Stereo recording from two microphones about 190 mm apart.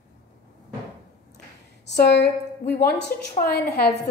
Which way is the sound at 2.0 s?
60° left (ahead or behind).